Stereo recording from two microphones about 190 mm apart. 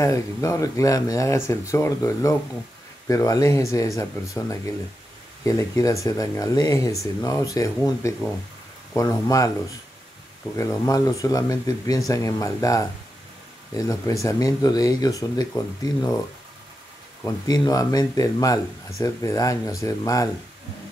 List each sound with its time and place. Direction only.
0.0 s speech: 15° left (ahead or behind)
10.5 s speech: 20° left (ahead or behind)
17.2 s speech: 20° left (ahead or behind)